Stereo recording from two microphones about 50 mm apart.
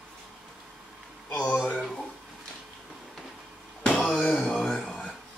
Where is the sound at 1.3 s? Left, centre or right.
Left.